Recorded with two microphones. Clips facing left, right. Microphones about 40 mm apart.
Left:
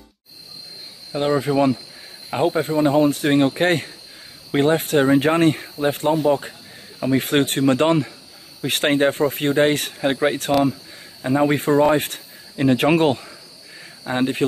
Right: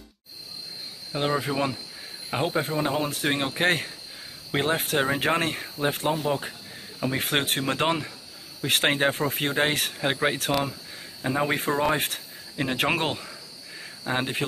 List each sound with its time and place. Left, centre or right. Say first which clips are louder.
1.1 s speech: left 7 dB; centre